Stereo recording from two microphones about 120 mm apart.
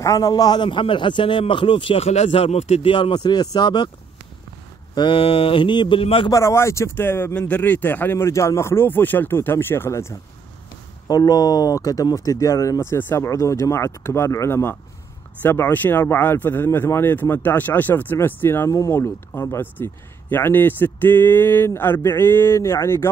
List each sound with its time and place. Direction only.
0.0 s a man's voice: 30° left (ahead or behind); by 2.9 s 60° left (ahead or behind)
2.9 s speech: 40° left (ahead or behind)
4.9 s a man's voice: 45° left (ahead or behind)
6.3 s speech: 25° left (ahead or behind)